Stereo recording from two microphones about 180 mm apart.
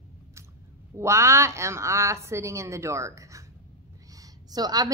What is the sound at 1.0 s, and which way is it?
A woman's voice, 15° right (ahead or behind).